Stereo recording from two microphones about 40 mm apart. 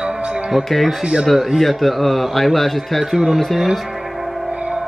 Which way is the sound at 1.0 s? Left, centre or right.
Centre.